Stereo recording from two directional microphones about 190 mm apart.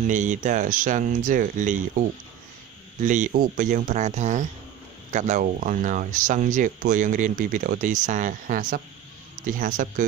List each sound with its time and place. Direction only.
0.0 s speech: 40° right (ahead or behind)